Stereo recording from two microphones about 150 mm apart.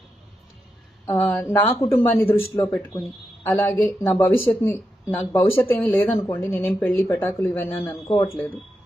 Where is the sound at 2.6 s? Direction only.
Centre (ahead or behind).